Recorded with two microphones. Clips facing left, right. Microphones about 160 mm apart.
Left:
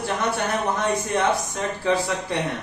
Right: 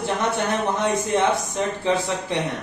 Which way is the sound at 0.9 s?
25° right (ahead or behind).